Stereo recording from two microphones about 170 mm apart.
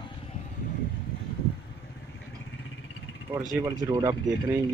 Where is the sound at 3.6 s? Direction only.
20° right (ahead or behind).